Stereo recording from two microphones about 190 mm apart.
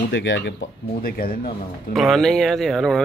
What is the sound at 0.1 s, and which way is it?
Speech, 75° left (ahead or behind).